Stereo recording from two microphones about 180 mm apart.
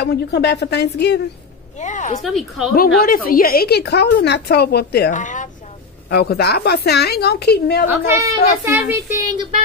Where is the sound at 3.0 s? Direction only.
55° left (ahead or behind).